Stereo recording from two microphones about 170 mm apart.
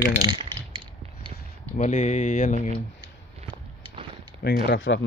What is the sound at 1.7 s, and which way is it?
Speech, 45° left (ahead or behind).